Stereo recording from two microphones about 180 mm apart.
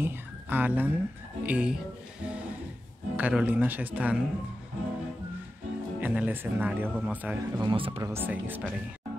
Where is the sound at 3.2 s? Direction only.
10° right (ahead or behind).